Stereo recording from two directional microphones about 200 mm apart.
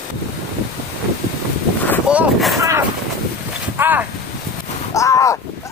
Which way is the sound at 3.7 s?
10° right (ahead or behind).